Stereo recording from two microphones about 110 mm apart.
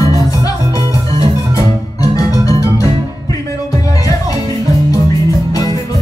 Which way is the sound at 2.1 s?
30° left (ahead or behind).